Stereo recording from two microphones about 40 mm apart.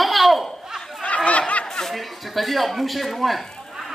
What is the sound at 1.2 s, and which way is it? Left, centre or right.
Snicker, left.